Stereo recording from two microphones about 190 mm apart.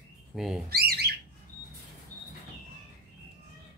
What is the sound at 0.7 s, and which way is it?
Squawk, 55° right (ahead or behind).